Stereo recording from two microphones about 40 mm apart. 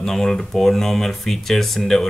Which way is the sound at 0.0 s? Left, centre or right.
Centre.